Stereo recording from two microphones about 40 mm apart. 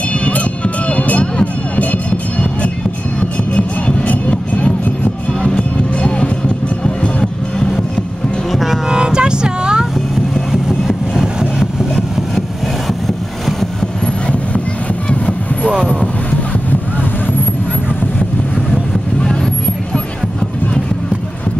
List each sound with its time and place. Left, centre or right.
0.2 s music: left
8.5 s music: centre
8.8 s music: right
10.3 s vehicle: centre
11.9 s vehicle: centre
15.0 s vehicle: left
15.7 s a sound: right